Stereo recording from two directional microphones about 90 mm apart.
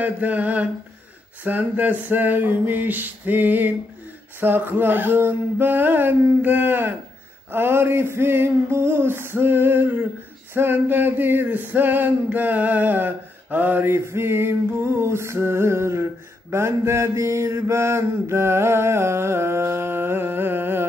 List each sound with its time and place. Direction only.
0.0 s mantra: 15° right (ahead or behind)
1.4 s male singing: 20° right (ahead or behind)